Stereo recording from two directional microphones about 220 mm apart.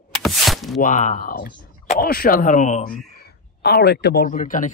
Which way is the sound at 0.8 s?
35° left (ahead or behind).